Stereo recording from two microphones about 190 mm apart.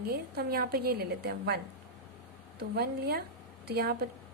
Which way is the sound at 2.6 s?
55° right (ahead or behind).